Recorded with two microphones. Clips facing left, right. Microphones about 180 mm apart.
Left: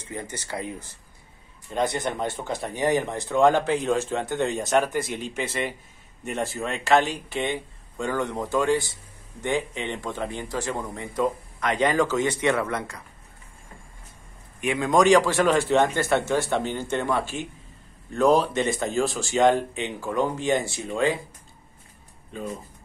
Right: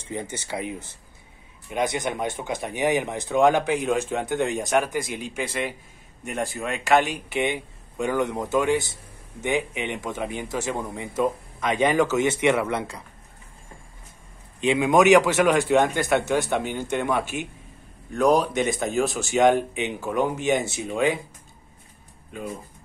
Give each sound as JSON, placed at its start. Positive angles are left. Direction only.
{"t": 0.1, "sound": "speech", "side_deg": -20}
{"t": 15.0, "sound": "speech", "side_deg": -20}